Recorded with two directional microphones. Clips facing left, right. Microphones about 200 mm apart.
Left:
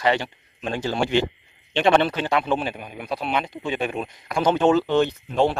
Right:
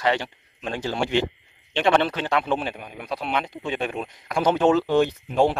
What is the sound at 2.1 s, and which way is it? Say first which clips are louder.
Speech: left 1 dB; 10° left (ahead or behind).